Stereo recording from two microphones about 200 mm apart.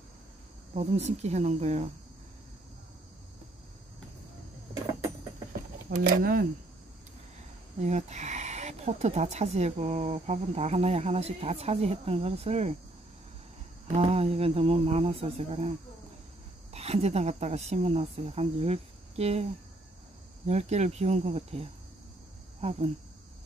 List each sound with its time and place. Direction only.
0.7 s speech: 35° right (ahead or behind)
5.9 s speech: 45° right (ahead or behind)
7.8 s speech: 35° right (ahead or behind)
13.9 s speech: 30° right (ahead or behind)
16.7 s speech: 30° right (ahead or behind)
20.4 s speech: 35° right (ahead or behind)